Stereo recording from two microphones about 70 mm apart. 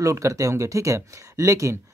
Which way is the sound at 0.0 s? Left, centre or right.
Right.